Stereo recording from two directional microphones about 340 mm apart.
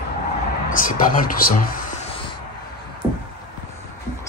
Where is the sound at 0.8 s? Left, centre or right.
Left.